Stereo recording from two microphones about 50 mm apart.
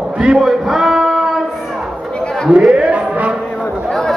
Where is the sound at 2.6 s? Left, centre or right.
Centre.